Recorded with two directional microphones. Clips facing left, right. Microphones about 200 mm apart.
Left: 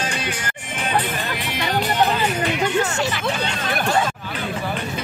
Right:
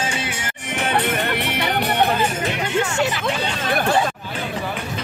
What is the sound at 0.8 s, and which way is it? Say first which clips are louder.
Music: right 2 dB; 70° right (ahead or behind).